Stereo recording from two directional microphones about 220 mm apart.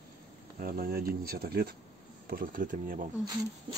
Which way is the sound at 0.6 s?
40° right (ahead or behind).